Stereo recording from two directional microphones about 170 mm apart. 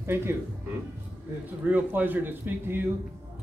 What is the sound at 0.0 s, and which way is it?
Speech, 15° right (ahead or behind).